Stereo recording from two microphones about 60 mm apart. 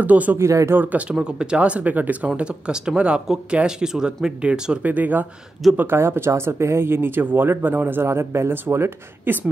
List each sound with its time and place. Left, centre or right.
0.0 s speech: right
0.4 s speech: right
1.1 s speech: centre
4.4 s speech: centre
5.8 s speech: right